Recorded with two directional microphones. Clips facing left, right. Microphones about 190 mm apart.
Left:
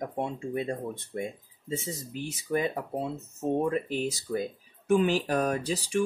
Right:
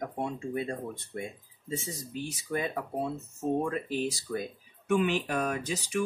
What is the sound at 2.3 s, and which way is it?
Speech, 25° left (ahead or behind).